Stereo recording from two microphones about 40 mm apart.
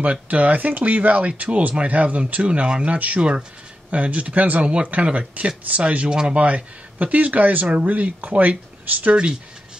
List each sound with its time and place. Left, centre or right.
0.0 s speech: right
3.2 s speech: right
3.9 s speech: right
6.4 s speech: right